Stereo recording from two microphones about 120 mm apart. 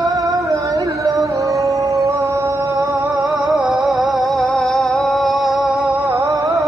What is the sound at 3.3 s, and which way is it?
Music, centre (ahead or behind).